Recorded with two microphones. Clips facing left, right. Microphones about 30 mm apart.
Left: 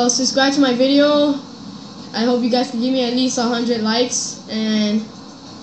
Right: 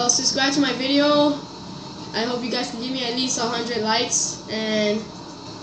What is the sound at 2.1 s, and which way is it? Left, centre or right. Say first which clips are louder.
Speech: left 7 dB; left.